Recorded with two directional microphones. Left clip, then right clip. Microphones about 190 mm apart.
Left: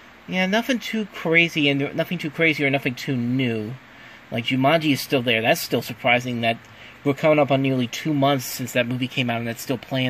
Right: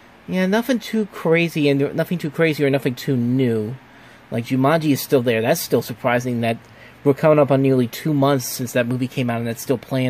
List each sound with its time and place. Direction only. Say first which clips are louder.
0.3 s speech: right 2 dB; 15° right (ahead or behind)